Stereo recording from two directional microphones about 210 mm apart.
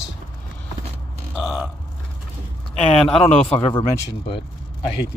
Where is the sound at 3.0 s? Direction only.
5° left (ahead or behind).